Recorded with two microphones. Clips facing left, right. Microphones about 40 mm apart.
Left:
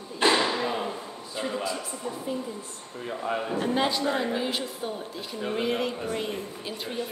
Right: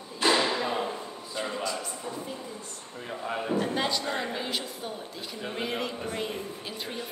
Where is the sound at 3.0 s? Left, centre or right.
Centre.